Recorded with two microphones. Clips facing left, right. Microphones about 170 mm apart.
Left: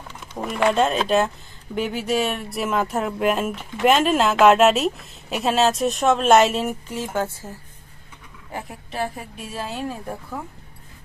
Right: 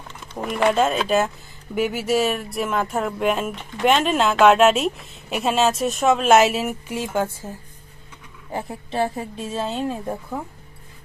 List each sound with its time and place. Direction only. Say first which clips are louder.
0.5 s speech: even; centre (ahead or behind)
7.0 s a woman's voice: right 2 dB; 20° right (ahead or behind)